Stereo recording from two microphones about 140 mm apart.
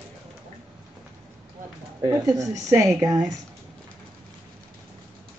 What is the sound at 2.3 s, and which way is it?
A woman's voice, 25° right (ahead or behind).